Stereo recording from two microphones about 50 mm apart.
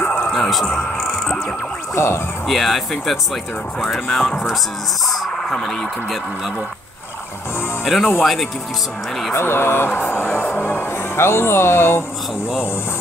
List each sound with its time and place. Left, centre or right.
0.0 s music: left
0.3 s music: centre
2.0 s speech: left
2.4 s speech: centre
7.8 s speech: centre
9.3 s speech: left